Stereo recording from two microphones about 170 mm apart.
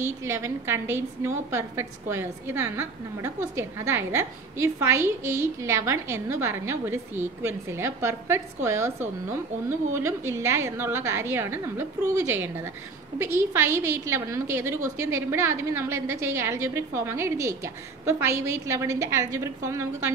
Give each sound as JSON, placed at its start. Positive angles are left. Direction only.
{"t": 0.0, "sound": "a woman's voice", "side_deg": -15}